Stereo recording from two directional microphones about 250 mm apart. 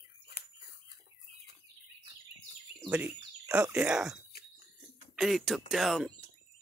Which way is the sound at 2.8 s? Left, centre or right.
Centre.